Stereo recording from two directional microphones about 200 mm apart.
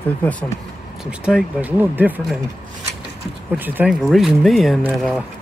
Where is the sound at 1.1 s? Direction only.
5° right (ahead or behind).